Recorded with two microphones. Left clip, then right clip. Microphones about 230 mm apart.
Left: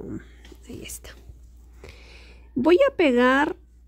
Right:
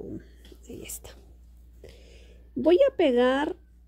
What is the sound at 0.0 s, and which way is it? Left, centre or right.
Speech, centre.